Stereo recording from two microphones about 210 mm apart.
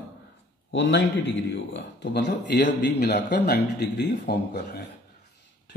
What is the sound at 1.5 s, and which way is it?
Mantra, 55° left (ahead or behind).